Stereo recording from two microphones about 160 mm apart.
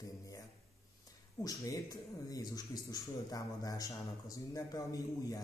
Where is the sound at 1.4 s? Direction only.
25° left (ahead or behind).